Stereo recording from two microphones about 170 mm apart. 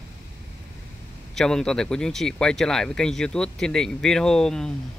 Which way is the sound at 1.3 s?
5° left (ahead or behind).